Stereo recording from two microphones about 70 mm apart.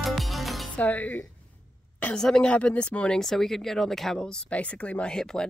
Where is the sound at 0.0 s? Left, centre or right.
Centre.